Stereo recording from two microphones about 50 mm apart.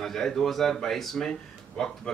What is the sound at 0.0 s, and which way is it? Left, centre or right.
Speech, centre.